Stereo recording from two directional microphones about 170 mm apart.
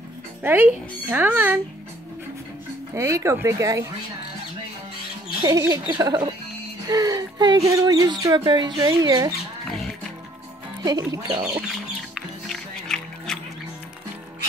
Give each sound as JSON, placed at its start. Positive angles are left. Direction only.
{"t": 0.4, "sound": "speech", "side_deg": -10}
{"t": 2.9, "sound": "speech", "side_deg": -15}
{"t": 5.4, "sound": "speech", "side_deg": -20}
{"t": 10.8, "sound": "speech", "side_deg": -20}
{"t": 11.2, "sound": "speech", "side_deg": -30}
{"t": 12.4, "sound": "music", "side_deg": 5}